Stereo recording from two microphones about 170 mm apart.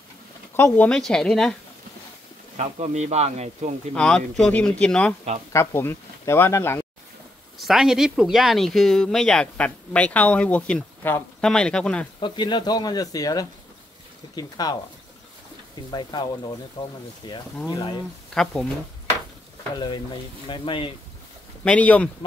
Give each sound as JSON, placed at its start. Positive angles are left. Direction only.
{"t": 0.6, "sound": "speech", "side_deg": 10}
{"t": 2.5, "sound": "speech", "side_deg": -40}
{"t": 3.9, "sound": "speech", "side_deg": 5}
{"t": 7.5, "sound": "speech", "side_deg": 0}
{"t": 12.2, "sound": "speech", "side_deg": 25}
{"t": 15.9, "sound": "speech", "side_deg": 25}
{"t": 18.3, "sound": "speech", "side_deg": 5}
{"t": 19.8, "sound": "speech", "side_deg": 30}
{"t": 21.6, "sound": "speech", "side_deg": 10}